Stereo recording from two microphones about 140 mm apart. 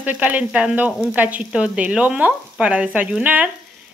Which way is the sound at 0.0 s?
10° right (ahead or behind).